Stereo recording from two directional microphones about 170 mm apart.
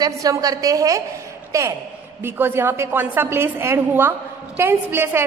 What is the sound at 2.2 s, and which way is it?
A woman's voice, 15° right (ahead or behind).